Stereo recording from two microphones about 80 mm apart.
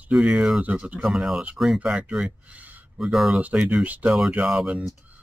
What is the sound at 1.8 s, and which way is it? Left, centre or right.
Speech, centre.